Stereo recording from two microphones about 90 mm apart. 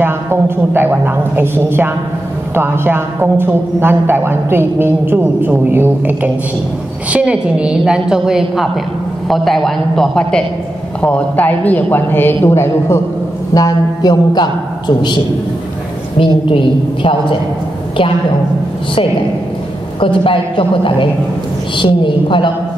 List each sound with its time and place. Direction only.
0.0 s a woman's voice: 25° right (ahead or behind); by 13.0 s 30° left (ahead or behind)
13.6 s music: 45° left (ahead or behind)
16.2 s a woman's voice: 75° left (ahead or behind)
20.0 s a woman's voice: 75° left (ahead or behind)